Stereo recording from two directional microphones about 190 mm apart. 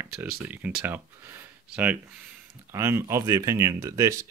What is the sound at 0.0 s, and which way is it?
Speech, 5° right (ahead or behind).